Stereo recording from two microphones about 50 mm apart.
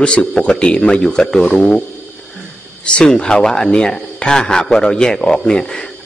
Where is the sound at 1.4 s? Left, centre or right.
Left.